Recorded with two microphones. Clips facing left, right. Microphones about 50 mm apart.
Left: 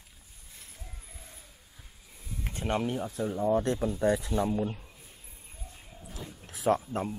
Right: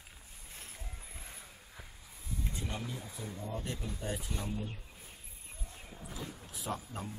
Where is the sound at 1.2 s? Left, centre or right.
Right.